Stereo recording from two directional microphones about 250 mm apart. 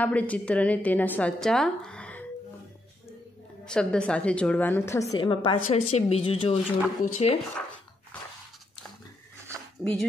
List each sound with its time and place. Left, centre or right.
0.0 s a woman's voice: centre
3.6 s a woman's voice: centre; by 7.3 s left
9.8 s a woman's voice: centre